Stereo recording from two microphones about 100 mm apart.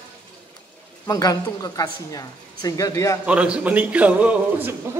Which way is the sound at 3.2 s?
10° right (ahead or behind).